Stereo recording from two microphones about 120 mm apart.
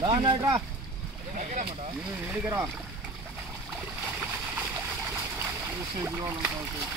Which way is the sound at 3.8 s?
10° right (ahead or behind).